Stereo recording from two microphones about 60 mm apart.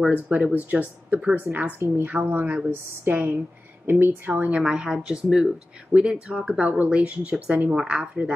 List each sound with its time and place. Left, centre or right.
0.1 s a woman's voice: right
4.6 s speech: centre
6.8 s a woman's voice: right